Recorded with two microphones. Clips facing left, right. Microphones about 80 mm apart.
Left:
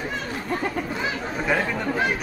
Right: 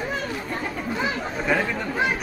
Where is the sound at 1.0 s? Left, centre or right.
Centre.